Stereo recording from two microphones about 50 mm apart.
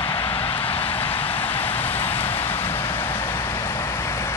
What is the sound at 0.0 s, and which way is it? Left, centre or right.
Vehicle, left.